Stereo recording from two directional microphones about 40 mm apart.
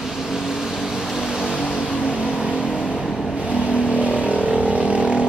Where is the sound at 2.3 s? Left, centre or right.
Right.